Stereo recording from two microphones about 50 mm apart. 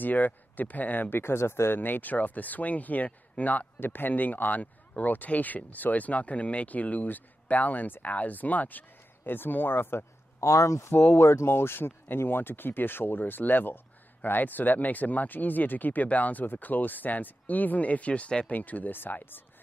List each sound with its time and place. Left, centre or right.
0.0 s speech: left
1.1 s speech: left
3.8 s speech: left
10.4 s speech: left
11.1 s speech: left
11.4 s speech: left
18.5 s speech: left